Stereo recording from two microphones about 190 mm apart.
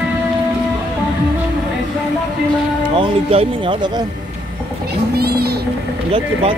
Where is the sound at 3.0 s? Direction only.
30° right (ahead or behind).